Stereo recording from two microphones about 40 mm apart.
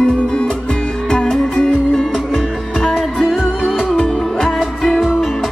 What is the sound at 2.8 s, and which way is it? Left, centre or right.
Music, centre.